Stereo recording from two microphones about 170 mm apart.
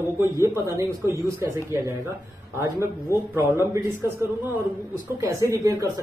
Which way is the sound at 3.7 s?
10° right (ahead or behind).